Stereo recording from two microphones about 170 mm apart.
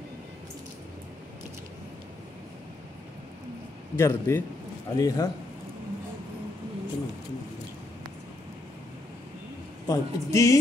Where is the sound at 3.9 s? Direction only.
15° left (ahead or behind).